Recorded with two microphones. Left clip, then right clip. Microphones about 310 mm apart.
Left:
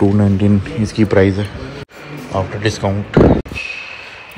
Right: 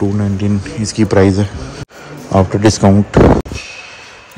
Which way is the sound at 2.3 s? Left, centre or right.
Right.